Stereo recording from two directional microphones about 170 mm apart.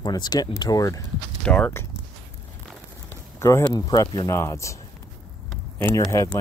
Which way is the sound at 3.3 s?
15° left (ahead or behind).